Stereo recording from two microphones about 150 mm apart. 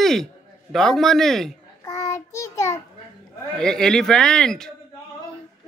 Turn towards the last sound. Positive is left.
turn(degrees=5)  # may be behind; listen again after turning